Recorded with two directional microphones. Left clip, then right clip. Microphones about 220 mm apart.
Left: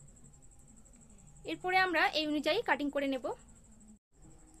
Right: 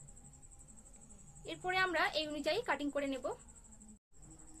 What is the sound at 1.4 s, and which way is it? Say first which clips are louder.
A woman's voice: left 5 dB; 40° left (ahead or behind).